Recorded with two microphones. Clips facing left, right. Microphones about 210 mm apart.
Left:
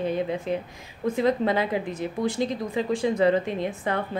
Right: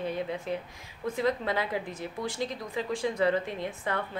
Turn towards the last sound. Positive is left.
turn(degrees=20)  # may be behind; listen again after turning